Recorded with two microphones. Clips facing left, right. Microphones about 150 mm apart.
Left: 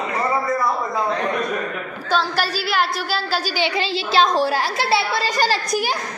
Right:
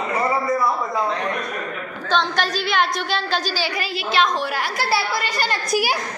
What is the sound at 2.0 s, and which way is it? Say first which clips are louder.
A woman's voice: even; 5° left (ahead or behind).